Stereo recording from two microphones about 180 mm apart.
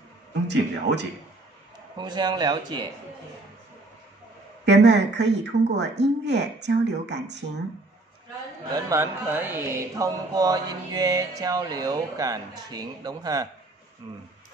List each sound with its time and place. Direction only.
0.5 s speech: 75° right (ahead or behind)
2.0 s speech: 25° right (ahead or behind)
4.6 s speech: 75° right (ahead or behind)
8.7 s speech: 15° right (ahead or behind)